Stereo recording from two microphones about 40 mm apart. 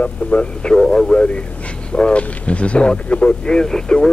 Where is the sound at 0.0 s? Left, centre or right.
Left.